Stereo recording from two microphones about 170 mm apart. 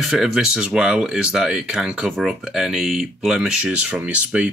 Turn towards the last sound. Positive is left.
turn(degrees=-10)  # may be behind; listen again after turning